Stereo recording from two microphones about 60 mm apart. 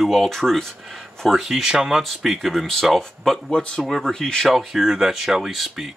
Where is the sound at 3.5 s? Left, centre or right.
Centre.